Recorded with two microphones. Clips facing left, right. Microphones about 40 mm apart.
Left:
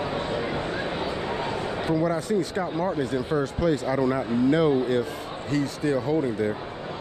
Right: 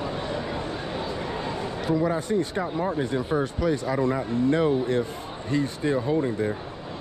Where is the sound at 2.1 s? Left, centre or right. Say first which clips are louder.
Even; right.